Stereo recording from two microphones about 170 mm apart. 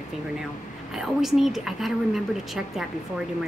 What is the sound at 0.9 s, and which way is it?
A woman's voice, centre (ahead or behind).